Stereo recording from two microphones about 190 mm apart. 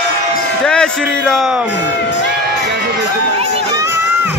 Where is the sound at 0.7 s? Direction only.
5° left (ahead or behind).